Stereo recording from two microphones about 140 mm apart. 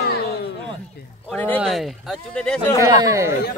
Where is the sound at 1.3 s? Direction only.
15° left (ahead or behind).